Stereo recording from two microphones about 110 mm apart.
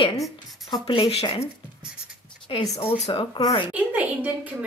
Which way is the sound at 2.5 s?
50° left (ahead or behind).